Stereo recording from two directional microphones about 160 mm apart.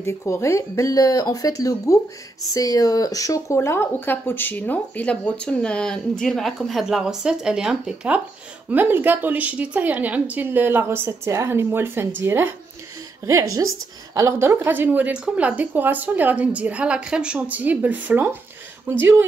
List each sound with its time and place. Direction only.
0.0 s a woman's voice: 15° left (ahead or behind); by 19.2 s 15° right (ahead or behind)